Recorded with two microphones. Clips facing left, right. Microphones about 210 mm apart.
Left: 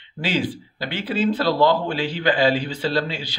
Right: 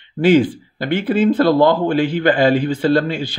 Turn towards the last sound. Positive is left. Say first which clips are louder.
# right 8 dB
turn(degrees=-50)  # may be behind; listen again after turning